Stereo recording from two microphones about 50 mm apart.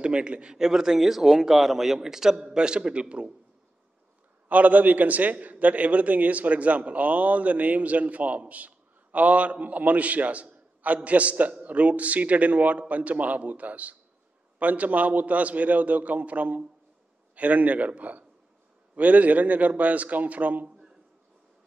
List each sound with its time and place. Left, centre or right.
0.0 s a man's voice: right
4.5 s a man's voice: right